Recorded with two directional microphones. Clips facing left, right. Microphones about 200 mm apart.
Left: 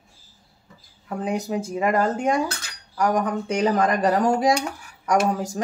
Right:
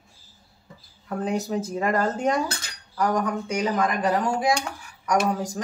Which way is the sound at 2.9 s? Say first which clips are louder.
Left 2 dB; 15° left (ahead or behind).